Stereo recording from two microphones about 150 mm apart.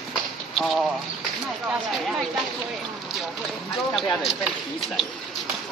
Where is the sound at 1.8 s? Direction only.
Centre (ahead or behind).